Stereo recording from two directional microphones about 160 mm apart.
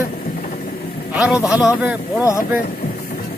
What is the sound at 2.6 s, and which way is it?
Vehicle, 65° left (ahead or behind).